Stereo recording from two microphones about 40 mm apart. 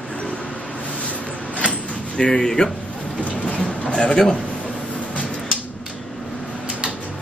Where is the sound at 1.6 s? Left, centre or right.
Left.